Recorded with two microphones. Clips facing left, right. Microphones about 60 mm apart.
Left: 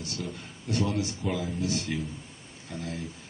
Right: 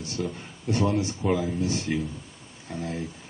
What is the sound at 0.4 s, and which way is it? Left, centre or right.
A man's voice, right.